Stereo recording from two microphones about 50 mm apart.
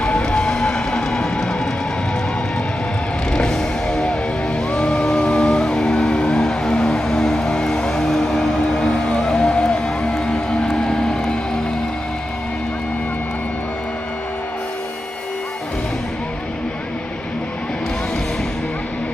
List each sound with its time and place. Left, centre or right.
0.0 s music: left
3.3 s music: centre